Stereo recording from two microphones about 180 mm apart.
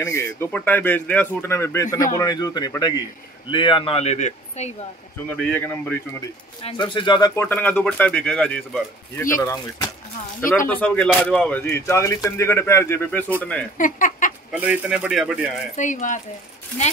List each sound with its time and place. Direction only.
0.0 s speech: 15° left (ahead or behind); by 4.7 s 40° left (ahead or behind)
5.3 s speech: 10° left (ahead or behind)
6.6 s speech: 25° left (ahead or behind)
7.3 s speech: 10° left (ahead or behind)
13.7 s speech: 50° left (ahead or behind)
14.5 s a man's voice: 10° right (ahead or behind)
15.7 s speech: 45° left (ahead or behind)